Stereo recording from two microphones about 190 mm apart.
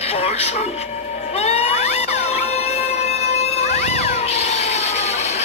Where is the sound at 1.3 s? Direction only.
35° left (ahead or behind).